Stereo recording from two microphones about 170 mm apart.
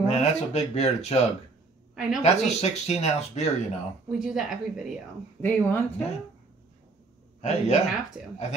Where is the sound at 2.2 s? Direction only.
40° left (ahead or behind).